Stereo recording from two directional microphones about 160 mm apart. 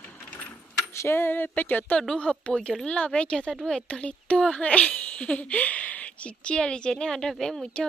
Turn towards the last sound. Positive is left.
turn(degrees=5)  # may be behind; listen again after turning